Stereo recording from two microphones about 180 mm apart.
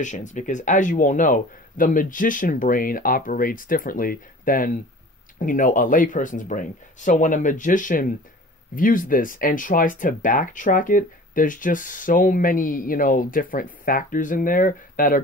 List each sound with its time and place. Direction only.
0.0 s speech: 45° left (ahead or behind)